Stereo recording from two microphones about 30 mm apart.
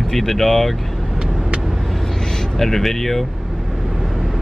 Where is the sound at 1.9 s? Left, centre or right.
Centre.